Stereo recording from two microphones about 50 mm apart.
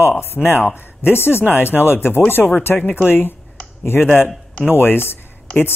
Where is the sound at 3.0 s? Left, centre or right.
Left.